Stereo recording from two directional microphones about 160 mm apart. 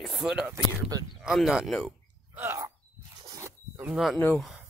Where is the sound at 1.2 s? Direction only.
Centre (ahead or behind).